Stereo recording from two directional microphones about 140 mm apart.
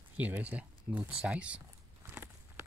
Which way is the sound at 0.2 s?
10° right (ahead or behind).